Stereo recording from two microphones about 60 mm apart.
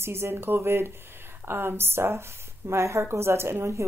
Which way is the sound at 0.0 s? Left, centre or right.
Right.